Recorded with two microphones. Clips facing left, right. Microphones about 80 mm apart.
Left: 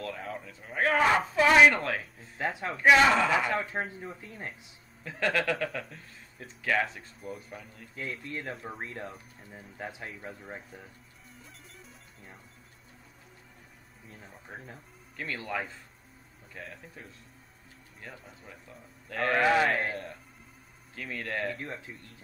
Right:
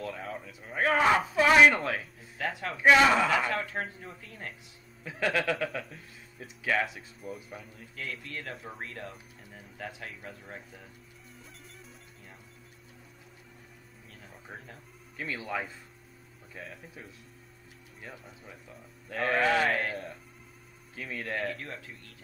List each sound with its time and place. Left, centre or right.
0.0 s speech: centre
2.3 s speech: left
2.7 s speech: centre
3.3 s speech: centre
5.0 s speech: centre
7.9 s speech: left
11.3 s music: centre
14.0 s music: left
14.5 s speech: centre
15.2 s speech: centre
19.4 s speech: centre
19.7 s speech: centre
21.7 s speech: centre